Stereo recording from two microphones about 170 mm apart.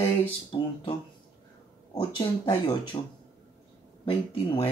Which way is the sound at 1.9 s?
25° left (ahead or behind).